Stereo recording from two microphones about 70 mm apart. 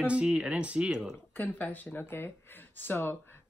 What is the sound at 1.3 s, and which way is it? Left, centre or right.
Speech, left.